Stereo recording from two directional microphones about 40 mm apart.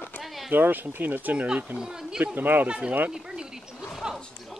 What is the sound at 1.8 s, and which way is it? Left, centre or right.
Speech, centre.